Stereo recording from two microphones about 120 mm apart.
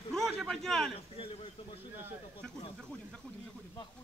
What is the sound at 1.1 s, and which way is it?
Speech, 50° left (ahead or behind).